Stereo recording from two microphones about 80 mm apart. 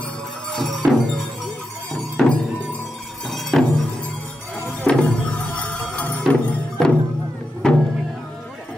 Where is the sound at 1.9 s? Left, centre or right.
Centre.